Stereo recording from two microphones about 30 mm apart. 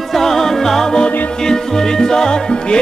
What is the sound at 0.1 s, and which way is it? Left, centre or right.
Music, centre.